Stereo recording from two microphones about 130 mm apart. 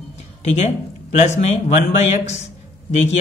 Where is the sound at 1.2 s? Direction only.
60° left (ahead or behind).